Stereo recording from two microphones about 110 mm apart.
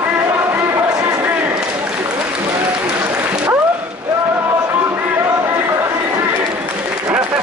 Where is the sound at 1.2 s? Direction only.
15° right (ahead or behind).